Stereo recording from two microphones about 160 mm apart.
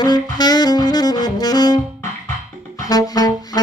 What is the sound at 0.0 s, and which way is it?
Saxophone, 25° left (ahead or behind).